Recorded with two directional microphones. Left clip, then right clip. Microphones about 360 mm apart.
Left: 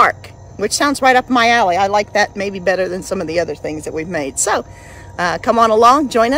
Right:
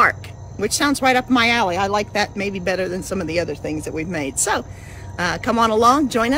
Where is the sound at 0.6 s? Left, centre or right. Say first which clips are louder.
Left 4 dB; centre.